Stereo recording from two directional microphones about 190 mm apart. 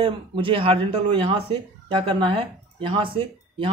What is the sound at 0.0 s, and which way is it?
Speech, 25° right (ahead or behind).